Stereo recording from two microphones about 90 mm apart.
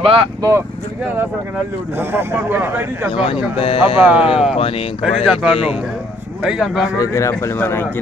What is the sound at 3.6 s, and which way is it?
Speech, 90° left.